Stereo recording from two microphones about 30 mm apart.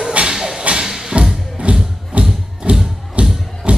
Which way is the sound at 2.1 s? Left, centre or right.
Right.